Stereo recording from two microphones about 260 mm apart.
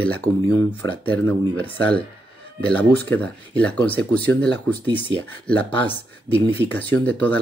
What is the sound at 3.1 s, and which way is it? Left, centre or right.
Speech, centre.